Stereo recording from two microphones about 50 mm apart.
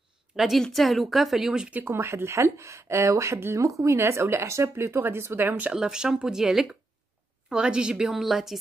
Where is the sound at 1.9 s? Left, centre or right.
Right.